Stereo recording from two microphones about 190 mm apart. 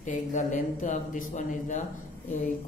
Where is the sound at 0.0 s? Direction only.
40° left (ahead or behind).